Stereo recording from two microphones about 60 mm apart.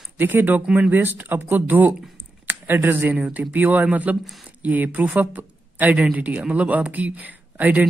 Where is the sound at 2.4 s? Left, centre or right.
Right.